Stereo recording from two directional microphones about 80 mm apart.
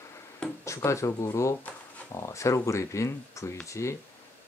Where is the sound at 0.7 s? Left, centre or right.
Left.